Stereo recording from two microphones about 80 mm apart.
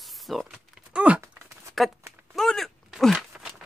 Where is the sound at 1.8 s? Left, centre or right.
Centre.